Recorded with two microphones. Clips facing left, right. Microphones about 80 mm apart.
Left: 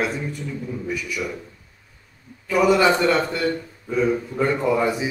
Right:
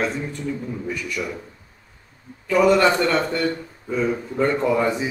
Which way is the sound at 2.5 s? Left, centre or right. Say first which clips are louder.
Right 1 dB; centre.